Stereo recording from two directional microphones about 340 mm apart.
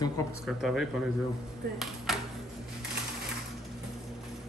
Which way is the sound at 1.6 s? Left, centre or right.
Right.